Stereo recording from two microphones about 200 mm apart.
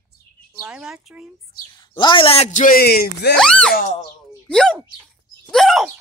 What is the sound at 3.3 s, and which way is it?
Speech, 5° left (ahead or behind).